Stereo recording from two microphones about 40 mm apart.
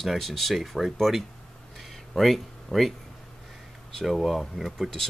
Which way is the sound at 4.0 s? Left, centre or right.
Centre.